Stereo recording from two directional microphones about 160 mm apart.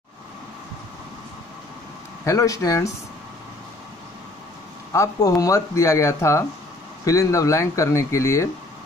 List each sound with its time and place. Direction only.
2.2 s speech: 20° left (ahead or behind)
4.9 s speech: 20° left (ahead or behind)